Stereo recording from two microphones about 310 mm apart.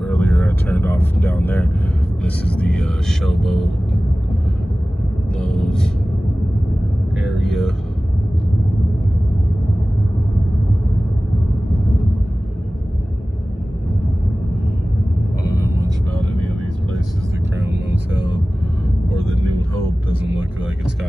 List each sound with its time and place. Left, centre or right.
0.1 s speech: centre
5.4 s speech: centre
7.3 s speech: centre
15.5 s vehicle: centre
19.3 s vehicle: right